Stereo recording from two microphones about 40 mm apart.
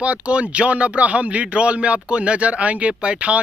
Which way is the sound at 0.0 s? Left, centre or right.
Right.